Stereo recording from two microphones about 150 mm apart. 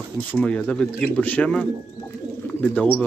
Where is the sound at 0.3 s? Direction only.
10° left (ahead or behind).